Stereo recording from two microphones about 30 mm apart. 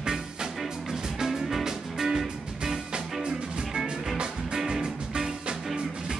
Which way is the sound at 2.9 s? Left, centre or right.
Right.